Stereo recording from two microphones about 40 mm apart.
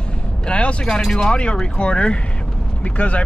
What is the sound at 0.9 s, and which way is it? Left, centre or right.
Speech, centre.